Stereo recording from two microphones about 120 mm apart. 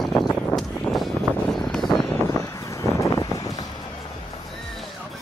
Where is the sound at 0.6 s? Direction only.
Centre (ahead or behind).